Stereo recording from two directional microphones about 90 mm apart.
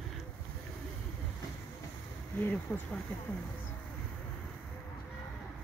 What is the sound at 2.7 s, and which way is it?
Speech, 25° left (ahead or behind).